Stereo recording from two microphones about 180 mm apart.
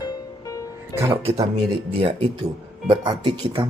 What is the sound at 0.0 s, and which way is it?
Music, 20° left (ahead or behind).